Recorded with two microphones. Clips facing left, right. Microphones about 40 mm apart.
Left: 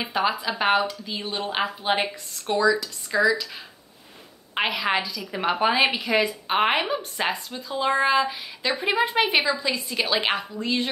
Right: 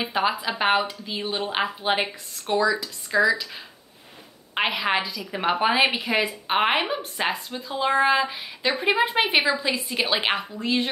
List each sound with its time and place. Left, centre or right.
0.1 s speech: centre
4.6 s speech: centre
8.4 s a woman's voice: right